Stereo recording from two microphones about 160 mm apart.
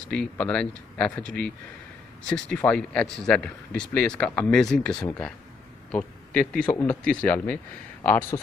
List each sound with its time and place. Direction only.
0.1 s a man's voice: 5° left (ahead or behind)
2.2 s a man's voice: 5° left (ahead or behind)